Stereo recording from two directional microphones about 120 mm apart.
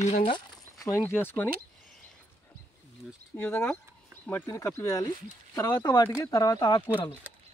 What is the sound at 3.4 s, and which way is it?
Speech, 20° left (ahead or behind).